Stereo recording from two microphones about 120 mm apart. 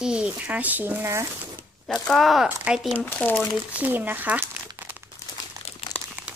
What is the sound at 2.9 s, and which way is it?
Speech, 15° left (ahead or behind).